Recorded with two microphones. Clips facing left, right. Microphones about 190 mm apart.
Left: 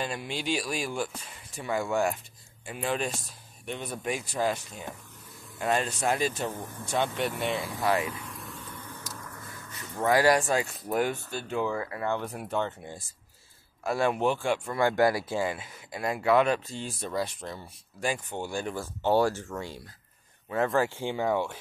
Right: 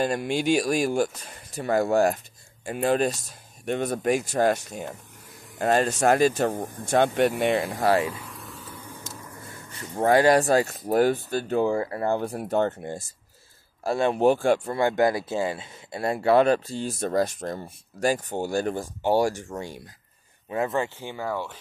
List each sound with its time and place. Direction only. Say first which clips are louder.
0.0 s speech: right 8 dB; 45° right (ahead or behind); by 7.8 s 65° right (ahead or behind)
7.8 s speech: right 4 dB; 30° right (ahead or behind)
8.1 s vehicle: right 1 dB; 5° right (ahead or behind)
9.0 s a sound: right 2 dB; 25° right (ahead or behind)
9.9 s speech: right 4 dB; 30° right (ahead or behind); by 13.0 s 50° right (ahead or behind)
13.8 s speech: right 3 dB; 25° right (ahead or behind)
14.2 s speech: right 7 dB; 40° right (ahead or behind)
14.8 s speech: right 2 dB; 20° right (ahead or behind); by 18.9 s 40° right (ahead or behind)
19.0 s speech: right 2 dB; 15° right (ahead or behind)
20.8 s speech: left 3 dB; 15° left (ahead or behind)